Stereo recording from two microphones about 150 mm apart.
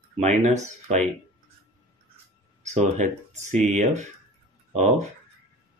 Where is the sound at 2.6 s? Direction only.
50° right (ahead or behind).